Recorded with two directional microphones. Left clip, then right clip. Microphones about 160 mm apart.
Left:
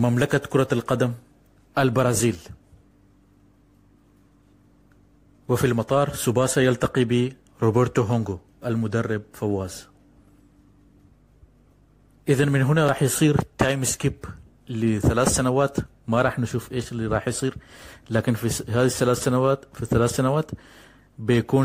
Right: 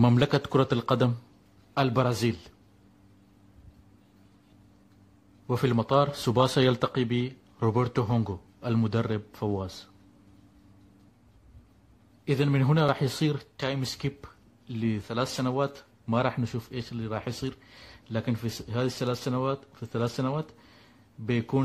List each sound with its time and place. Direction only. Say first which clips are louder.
0.1 s a man's voice: left 3 dB; 10° left (ahead or behind)
1.7 s speech: left 5 dB; 25° left (ahead or behind)
5.5 s a man's voice: left 4 dB; 10° left (ahead or behind)
6.8 s a man's voice: left 6 dB; 15° left (ahead or behind)
12.3 s speech: left 6 dB; 20° left (ahead or behind)